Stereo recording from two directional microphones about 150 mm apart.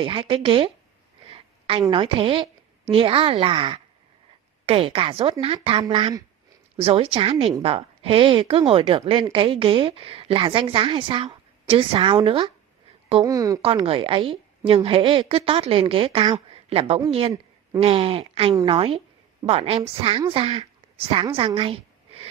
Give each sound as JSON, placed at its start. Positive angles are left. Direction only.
{"t": 0.0, "sound": "a woman's voice", "side_deg": -35}
{"t": 13.2, "sound": "speech", "side_deg": -25}
{"t": 13.8, "sound": "speech", "side_deg": -35}
{"t": 21.5, "sound": "a sound", "side_deg": -40}